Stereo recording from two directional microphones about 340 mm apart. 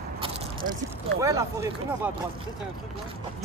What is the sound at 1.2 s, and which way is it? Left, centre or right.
Speech, centre.